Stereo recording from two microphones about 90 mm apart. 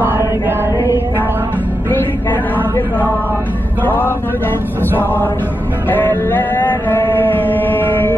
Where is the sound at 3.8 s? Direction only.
20° left (ahead or behind).